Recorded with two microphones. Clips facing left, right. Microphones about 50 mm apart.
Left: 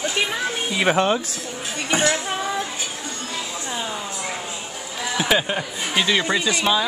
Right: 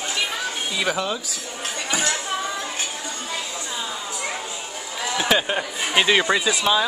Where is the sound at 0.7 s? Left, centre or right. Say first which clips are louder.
Left 6 dB; left.